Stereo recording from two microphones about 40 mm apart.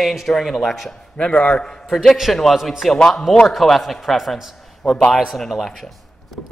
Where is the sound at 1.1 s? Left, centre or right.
Left.